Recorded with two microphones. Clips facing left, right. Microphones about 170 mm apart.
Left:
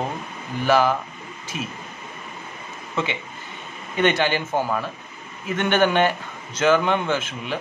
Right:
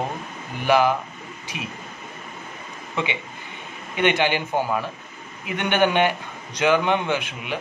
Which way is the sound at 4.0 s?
15° right (ahead or behind).